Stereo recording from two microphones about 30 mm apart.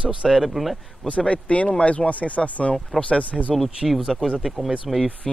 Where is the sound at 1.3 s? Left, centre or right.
Left.